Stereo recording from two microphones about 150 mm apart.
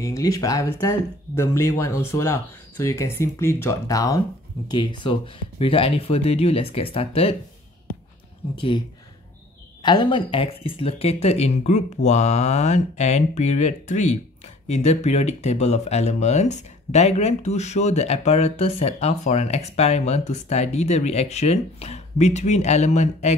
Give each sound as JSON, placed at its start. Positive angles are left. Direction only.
{"t": 0.0, "sound": "speech", "side_deg": 20}
{"t": 4.6, "sound": "speech", "side_deg": 30}
{"t": 8.5, "sound": "speech", "side_deg": 35}